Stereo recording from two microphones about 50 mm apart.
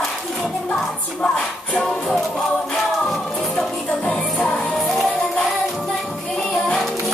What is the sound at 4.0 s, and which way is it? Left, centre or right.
Music, centre.